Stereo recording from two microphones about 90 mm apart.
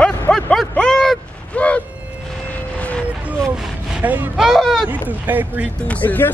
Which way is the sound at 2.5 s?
15° left (ahead or behind).